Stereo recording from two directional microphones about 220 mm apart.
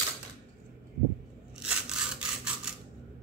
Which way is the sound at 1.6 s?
5° right (ahead or behind).